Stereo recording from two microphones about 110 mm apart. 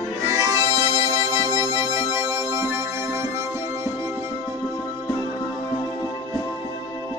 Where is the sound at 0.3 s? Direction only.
30° right (ahead or behind).